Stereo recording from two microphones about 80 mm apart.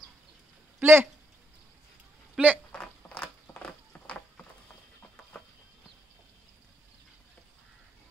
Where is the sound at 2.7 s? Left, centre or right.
Centre.